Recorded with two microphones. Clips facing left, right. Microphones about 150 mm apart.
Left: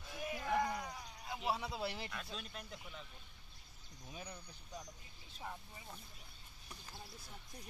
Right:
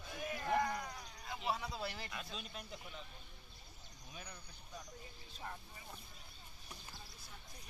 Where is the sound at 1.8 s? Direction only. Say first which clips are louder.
Left 3 dB; 25° left (ahead or behind).